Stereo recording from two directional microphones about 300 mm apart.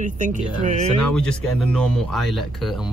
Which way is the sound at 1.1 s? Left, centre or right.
Centre.